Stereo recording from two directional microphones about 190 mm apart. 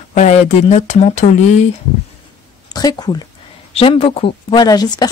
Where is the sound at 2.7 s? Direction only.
20° left (ahead or behind).